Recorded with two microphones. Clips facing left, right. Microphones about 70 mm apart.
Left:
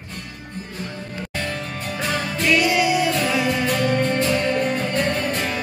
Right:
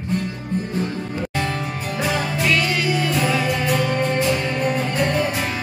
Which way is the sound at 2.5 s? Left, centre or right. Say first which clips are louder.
Left 4 dB; centre.